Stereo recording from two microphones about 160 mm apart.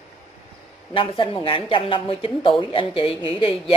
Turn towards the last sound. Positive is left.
turn(degrees=35)  # may be behind; listen again after turning